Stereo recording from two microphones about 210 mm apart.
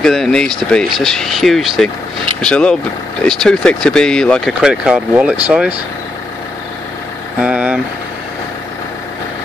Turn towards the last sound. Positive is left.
turn(degrees=-5)  # may be behind; listen again after turning